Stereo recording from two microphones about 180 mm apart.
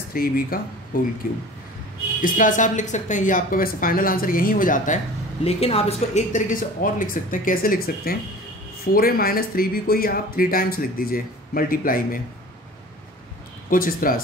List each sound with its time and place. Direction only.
0.1 s a woman's voice: 55° left (ahead or behind)
2.2 s a woman's voice: 45° left (ahead or behind)
13.7 s a woman's voice: 50° left (ahead or behind)